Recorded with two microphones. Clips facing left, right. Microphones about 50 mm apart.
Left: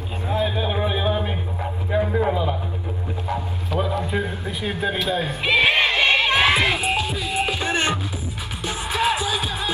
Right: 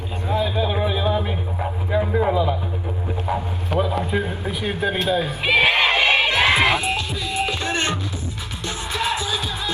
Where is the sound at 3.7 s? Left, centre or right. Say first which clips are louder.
Right 3 dB; right.